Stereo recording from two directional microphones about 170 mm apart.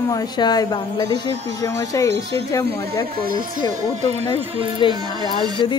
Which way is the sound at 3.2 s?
60° right (ahead or behind).